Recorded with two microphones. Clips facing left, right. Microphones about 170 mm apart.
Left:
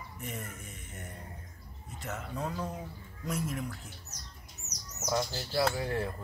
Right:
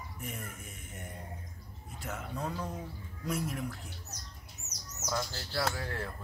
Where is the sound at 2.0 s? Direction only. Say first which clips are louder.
Left 1 dB; centre (ahead or behind).